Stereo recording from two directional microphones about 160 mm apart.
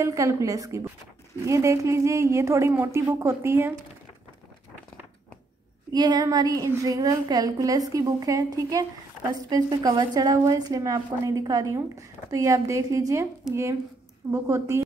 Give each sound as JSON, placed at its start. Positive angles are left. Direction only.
{"t": 0.0, "sound": "a woman's voice", "side_deg": -20}
{"t": 5.9, "sound": "a woman's voice", "side_deg": -25}
{"t": 14.3, "sound": "a woman's voice", "side_deg": -15}